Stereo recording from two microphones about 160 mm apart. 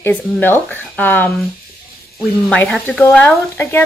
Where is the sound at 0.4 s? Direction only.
15° left (ahead or behind).